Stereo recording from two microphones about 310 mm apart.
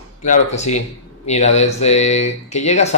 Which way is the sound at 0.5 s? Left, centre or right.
Left.